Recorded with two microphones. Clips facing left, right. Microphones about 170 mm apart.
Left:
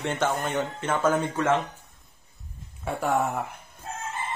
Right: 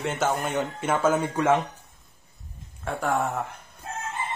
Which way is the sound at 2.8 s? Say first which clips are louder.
Left 1 dB; 5° left (ahead or behind).